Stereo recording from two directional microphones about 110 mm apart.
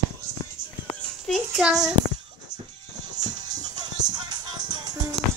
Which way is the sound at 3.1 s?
40° right (ahead or behind).